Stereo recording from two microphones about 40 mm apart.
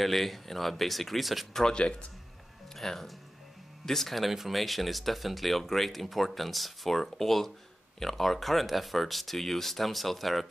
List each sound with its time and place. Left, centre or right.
0.0 s speech: centre
1.5 s speech: centre
1.8 s speech: left
2.7 s speech: centre